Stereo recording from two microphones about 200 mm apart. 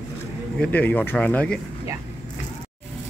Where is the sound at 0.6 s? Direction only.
10° left (ahead or behind).